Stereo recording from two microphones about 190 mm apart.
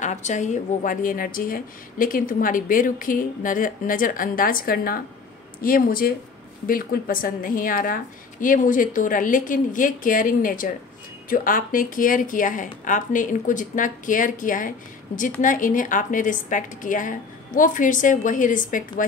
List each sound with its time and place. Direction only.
0.0 s a woman's voice: 40° left (ahead or behind)